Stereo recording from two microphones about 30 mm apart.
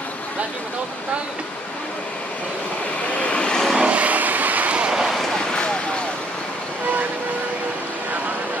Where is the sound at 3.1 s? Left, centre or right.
Left.